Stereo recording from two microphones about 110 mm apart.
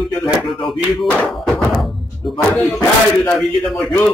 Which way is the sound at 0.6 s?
Centre (ahead or behind).